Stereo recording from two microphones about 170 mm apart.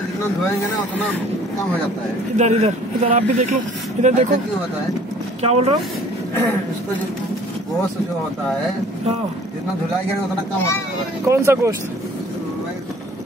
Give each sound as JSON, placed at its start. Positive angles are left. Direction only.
{"t": 2.3, "sound": "speech", "side_deg": -40}
{"t": 5.4, "sound": "speech", "side_deg": -40}
{"t": 11.2, "sound": "speech", "side_deg": -15}